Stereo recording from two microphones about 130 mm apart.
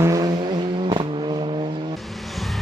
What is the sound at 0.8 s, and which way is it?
Vehicle, 40° right (ahead or behind).